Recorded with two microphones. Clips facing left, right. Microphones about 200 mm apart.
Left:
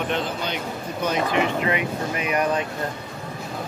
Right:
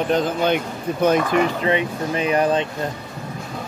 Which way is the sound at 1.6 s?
30° right (ahead or behind).